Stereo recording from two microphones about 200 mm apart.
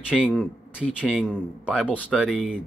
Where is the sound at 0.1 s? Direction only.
5° left (ahead or behind).